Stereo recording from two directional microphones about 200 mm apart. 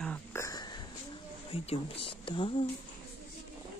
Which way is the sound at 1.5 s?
30° left (ahead or behind).